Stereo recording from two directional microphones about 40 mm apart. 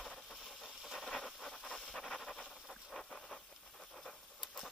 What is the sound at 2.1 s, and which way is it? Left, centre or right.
Pant, left.